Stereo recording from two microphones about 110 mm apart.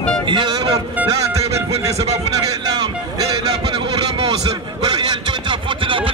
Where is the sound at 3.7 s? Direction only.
45° right (ahead or behind).